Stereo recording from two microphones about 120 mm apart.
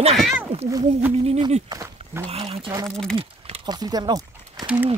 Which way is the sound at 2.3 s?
55° right (ahead or behind).